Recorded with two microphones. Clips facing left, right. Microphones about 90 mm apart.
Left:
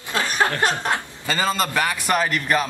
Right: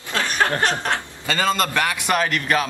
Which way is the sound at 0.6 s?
15° left (ahead or behind).